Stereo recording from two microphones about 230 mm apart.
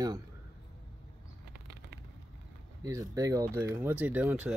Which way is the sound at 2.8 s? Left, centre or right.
Centre.